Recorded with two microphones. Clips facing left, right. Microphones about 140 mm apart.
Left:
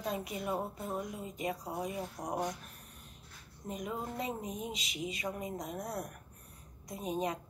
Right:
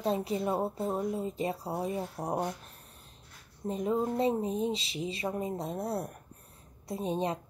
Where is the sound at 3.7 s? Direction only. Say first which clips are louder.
Right 9 dB; 30° right (ahead or behind).